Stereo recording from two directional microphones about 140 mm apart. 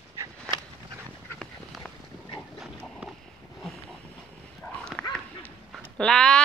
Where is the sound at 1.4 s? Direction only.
Centre (ahead or behind).